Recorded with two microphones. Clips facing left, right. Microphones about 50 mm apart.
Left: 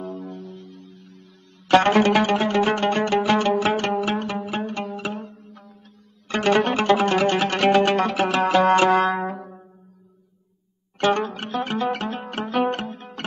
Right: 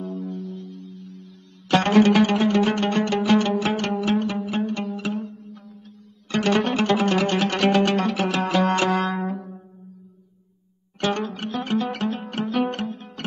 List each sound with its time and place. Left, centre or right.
0.0 s music: centre
1.7 s zither: centre
6.2 s music: centre
11.0 s zither: centre